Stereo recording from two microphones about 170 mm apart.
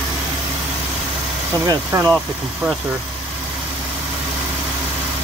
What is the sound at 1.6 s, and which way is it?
Speech, 20° right (ahead or behind).